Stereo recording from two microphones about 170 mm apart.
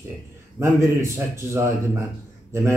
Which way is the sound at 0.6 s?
15° right (ahead or behind).